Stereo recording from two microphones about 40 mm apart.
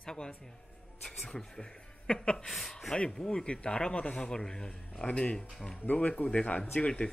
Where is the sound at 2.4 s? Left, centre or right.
Centre.